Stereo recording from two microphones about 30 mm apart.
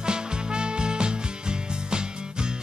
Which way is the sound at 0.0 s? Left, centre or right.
Right.